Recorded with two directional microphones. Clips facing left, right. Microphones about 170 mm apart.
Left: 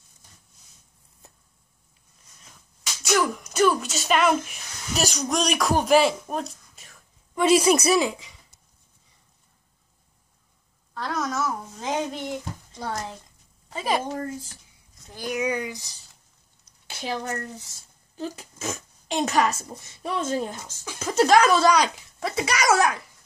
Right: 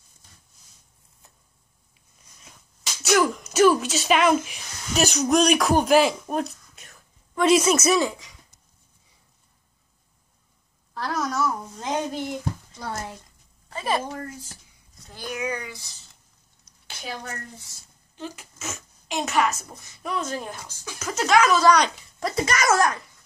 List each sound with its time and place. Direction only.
3.0 s speech: centre (ahead or behind)
11.0 s a sound: centre (ahead or behind)
13.7 s a woman's voice: 15° left (ahead or behind)
17.0 s a woman's voice: 40° left (ahead or behind)
21.6 s speech: 5° left (ahead or behind)